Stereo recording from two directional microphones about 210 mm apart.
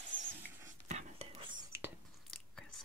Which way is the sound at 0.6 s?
35° right (ahead or behind).